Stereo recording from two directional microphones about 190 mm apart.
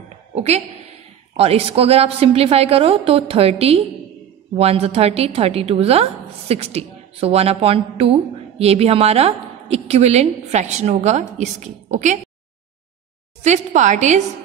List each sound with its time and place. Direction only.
0.3 s a woman's voice: 35° right (ahead or behind)
13.4 s a woman's voice: 40° right (ahead or behind)